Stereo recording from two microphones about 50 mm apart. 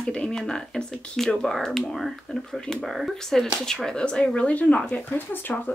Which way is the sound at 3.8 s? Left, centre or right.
Centre.